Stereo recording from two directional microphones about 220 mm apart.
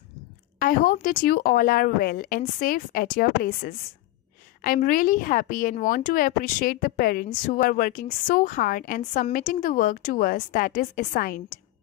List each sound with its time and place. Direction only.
0.6 s speech: 40° left (ahead or behind)